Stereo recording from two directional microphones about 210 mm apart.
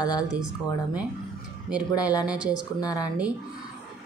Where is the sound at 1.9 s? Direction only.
20° left (ahead or behind).